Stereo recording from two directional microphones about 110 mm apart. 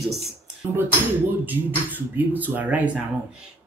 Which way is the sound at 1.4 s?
15° right (ahead or behind).